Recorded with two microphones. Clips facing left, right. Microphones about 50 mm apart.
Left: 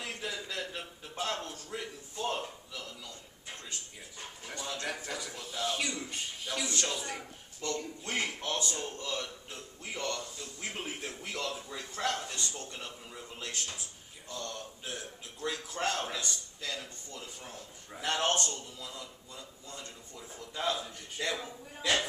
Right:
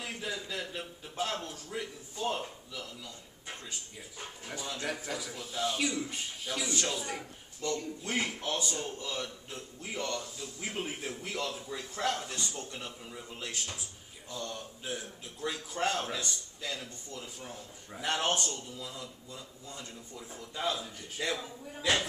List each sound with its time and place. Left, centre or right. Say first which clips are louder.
0.0 s a man's voice: right 1 dB; centre
4.5 s a man's voice: right 1 dB; centre